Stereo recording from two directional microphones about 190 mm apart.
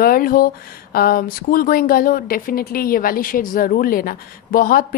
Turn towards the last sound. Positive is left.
turn(degrees=50)  # may be behind; listen again after turning